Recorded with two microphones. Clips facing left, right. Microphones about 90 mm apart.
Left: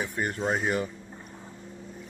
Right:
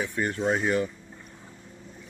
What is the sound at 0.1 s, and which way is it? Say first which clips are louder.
Speech: right 2 dB; 5° left (ahead or behind).